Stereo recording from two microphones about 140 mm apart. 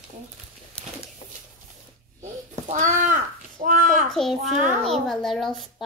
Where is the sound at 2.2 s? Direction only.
65° right (ahead or behind).